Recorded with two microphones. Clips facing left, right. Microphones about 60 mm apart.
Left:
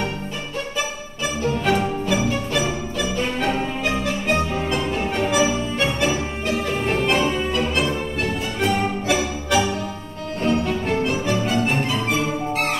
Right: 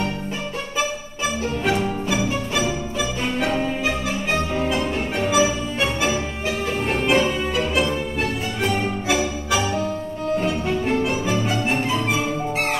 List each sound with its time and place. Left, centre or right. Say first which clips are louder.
1.7 s music: left 1 dB; centre
8.5 s music: left 2 dB; centre